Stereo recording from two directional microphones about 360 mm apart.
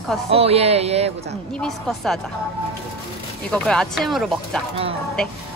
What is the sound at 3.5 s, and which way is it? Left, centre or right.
A woman's voice, centre.